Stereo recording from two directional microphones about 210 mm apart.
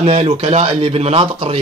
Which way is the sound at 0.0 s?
30° right (ahead or behind).